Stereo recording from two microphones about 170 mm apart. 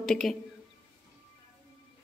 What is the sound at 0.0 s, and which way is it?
Speech, centre (ahead or behind).